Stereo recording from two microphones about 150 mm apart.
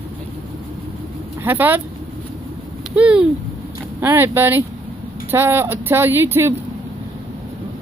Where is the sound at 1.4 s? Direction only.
10° right (ahead or behind).